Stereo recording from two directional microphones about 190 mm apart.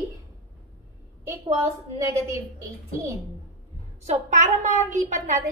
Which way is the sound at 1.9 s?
15° right (ahead or behind).